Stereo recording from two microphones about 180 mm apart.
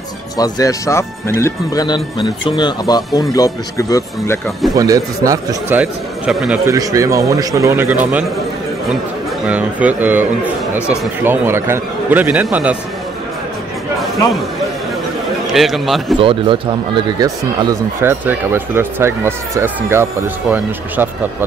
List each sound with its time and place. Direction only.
0.4 s speech: 20° left (ahead or behind)
4.7 s a man's voice: 20° right (ahead or behind)
6.7 s a man's voice: 20° right (ahead or behind)
9.5 s a man's voice: 10° right (ahead or behind)
15.5 s speech: centre (ahead or behind)
16.2 s speech: 30° right (ahead or behind)
18.2 s a man's voice: 10° right (ahead or behind)